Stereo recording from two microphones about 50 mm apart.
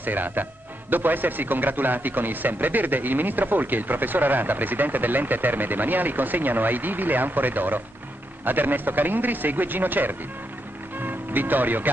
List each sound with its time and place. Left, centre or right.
0.0 s speech: right
11.0 s music: right